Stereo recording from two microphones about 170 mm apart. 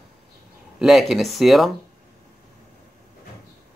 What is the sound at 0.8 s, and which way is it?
Speech, centre (ahead or behind).